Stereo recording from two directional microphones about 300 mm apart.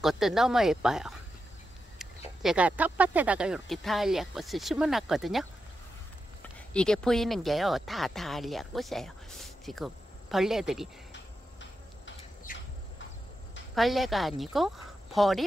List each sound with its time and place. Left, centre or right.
0.0 s speech: centre
6.7 s speech: centre
12.5 s a sound: left
13.7 s speech: centre